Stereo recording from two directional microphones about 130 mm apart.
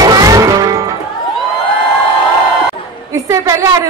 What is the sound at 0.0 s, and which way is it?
Music, 30° right (ahead or behind).